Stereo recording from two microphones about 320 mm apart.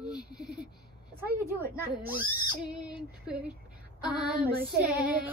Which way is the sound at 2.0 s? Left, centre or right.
Centre.